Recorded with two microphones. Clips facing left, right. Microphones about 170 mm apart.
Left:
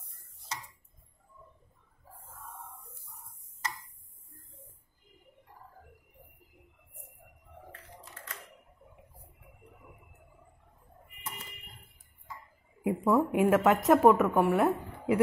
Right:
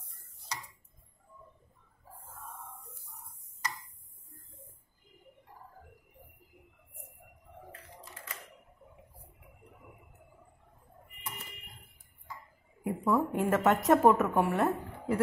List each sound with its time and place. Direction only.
12.8 s speech: 25° left (ahead or behind)
13.3 s a woman's voice: 10° left (ahead or behind)